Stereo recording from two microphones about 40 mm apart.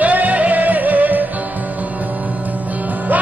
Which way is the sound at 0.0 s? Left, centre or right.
Right.